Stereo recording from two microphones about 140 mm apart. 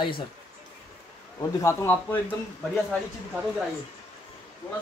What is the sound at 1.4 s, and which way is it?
Speech, 20° left (ahead or behind).